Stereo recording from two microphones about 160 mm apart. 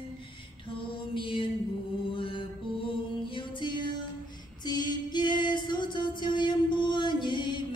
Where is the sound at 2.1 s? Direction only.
35° left (ahead or behind).